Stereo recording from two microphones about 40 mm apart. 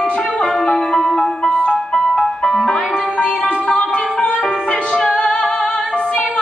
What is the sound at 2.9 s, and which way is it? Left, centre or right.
Music, left.